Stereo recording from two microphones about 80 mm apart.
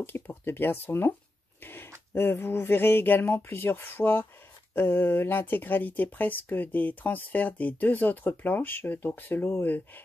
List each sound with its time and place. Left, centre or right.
0.0 s speech: left
1.6 s a sound: left
2.1 s speech: left